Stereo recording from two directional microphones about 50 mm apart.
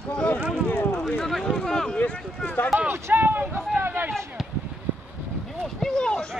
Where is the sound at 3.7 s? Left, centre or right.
Right.